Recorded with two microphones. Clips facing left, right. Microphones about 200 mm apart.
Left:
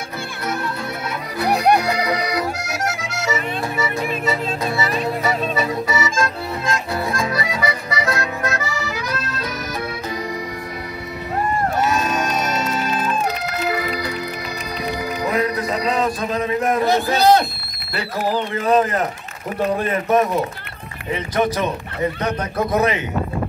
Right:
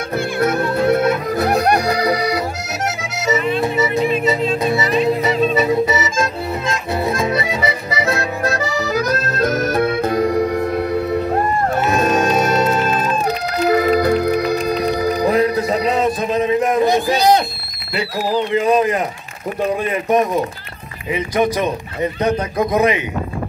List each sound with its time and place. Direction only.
0.1 s music: 55° right (ahead or behind)
13.6 s music: 45° right (ahead or behind); by 14.6 s 60° right (ahead or behind)
15.0 s music: 40° right (ahead or behind); by 17.4 s 15° right (ahead or behind)
17.9 s speech: 15° right (ahead or behind)